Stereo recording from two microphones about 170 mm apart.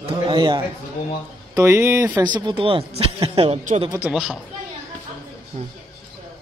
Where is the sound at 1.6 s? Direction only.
15° right (ahead or behind).